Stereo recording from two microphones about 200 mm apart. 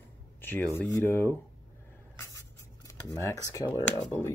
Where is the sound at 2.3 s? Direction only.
15° left (ahead or behind).